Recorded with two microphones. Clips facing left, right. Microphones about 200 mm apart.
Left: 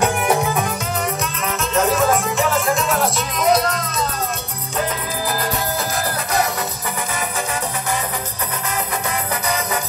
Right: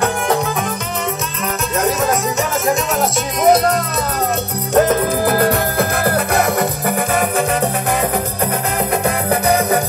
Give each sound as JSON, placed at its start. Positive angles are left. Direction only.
{"t": 3.4, "sound": "music", "side_deg": -55}
{"t": 8.9, "sound": "music", "side_deg": -55}